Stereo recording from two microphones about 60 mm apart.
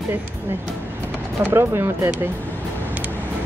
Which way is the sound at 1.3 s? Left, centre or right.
Right.